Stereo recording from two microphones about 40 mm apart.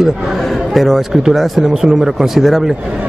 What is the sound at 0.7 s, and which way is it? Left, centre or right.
A man's voice, centre.